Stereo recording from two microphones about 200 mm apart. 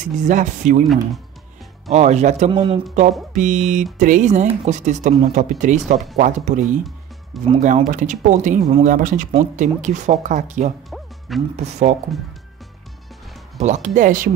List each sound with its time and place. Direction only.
0.0 s speech: 40° right (ahead or behind)
1.9 s speech: 35° right (ahead or behind)
10.9 s music: centre (ahead or behind)
11.5 s speech: 35° right (ahead or behind)
13.6 s speech: 35° right (ahead or behind)